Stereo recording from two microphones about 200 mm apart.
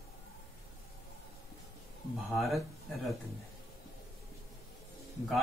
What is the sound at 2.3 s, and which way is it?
Speech, centre (ahead or behind).